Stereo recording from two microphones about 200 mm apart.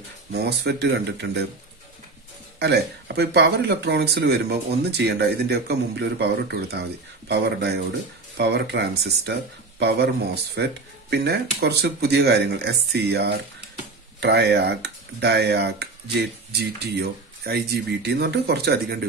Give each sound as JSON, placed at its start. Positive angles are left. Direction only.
{"t": 0.3, "sound": "speech", "side_deg": -55}
{"t": 2.6, "sound": "speech", "side_deg": -55}